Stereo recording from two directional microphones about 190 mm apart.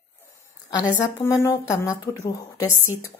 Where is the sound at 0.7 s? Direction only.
20° left (ahead or behind).